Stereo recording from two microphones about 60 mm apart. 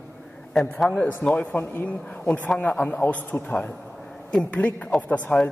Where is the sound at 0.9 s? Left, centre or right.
Left.